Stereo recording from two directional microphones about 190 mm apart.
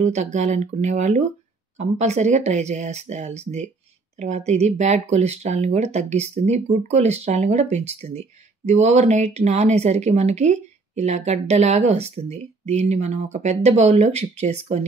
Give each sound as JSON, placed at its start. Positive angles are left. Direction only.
{"t": 0.0, "sound": "speech", "side_deg": -40}